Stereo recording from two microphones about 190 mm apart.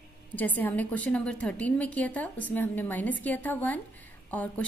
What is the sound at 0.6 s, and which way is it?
A woman's voice, 10° left (ahead or behind).